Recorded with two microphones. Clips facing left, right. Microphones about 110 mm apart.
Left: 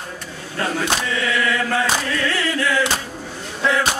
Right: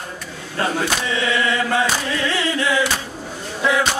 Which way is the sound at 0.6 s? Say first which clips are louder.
Right 2 dB; 30° right (ahead or behind).